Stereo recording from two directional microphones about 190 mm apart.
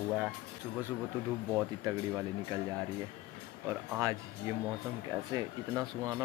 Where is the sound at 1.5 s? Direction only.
15° right (ahead or behind).